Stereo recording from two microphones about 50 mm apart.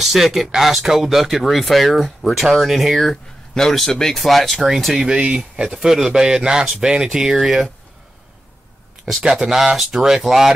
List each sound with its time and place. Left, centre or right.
0.0 s speech: centre
9.2 s speech: centre